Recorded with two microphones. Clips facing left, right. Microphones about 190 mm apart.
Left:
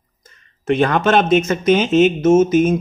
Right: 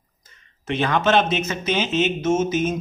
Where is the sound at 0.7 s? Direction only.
50° left (ahead or behind).